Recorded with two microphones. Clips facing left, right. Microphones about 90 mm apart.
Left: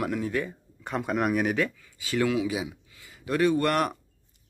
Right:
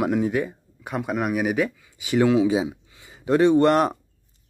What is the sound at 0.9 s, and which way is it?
Speech, 5° right (ahead or behind).